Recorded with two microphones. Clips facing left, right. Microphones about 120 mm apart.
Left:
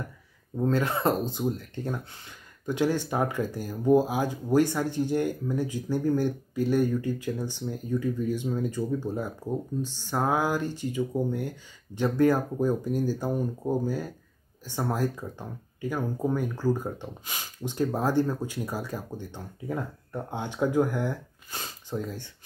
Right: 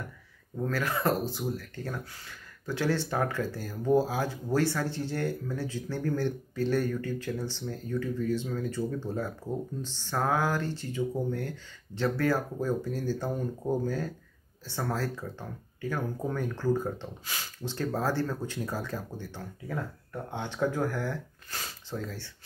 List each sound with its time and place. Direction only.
0.6 s speech: 20° left (ahead or behind)